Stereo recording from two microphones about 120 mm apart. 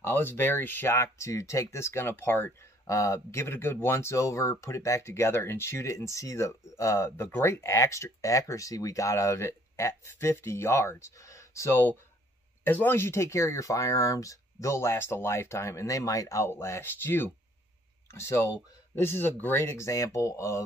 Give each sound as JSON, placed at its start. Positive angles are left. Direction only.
{"t": 0.0, "sound": "speech", "side_deg": 20}